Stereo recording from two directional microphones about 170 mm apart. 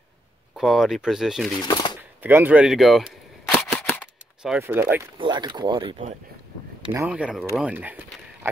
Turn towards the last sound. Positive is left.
turn(degrees=-10)  # may be behind; listen again after turning